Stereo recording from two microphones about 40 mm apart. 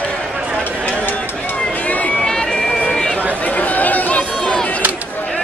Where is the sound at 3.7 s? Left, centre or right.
Left.